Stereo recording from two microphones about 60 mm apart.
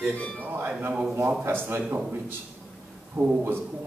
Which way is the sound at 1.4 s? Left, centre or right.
Right.